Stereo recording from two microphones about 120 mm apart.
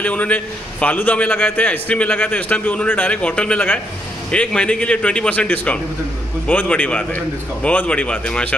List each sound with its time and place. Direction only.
0.0 s a man's voice: 10° left (ahead or behind)